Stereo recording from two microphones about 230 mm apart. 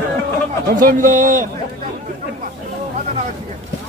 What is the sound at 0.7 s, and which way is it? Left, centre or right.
Speech, right.